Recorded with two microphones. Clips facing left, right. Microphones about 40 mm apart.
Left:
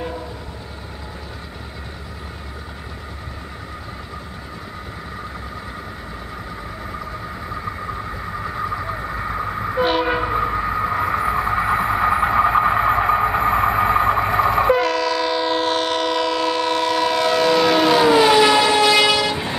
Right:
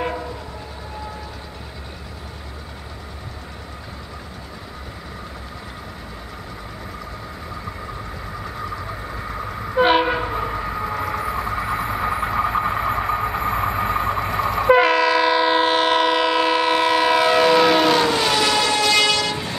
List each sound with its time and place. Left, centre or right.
9.8 s train: centre
10.2 s train: left
14.7 s train: centre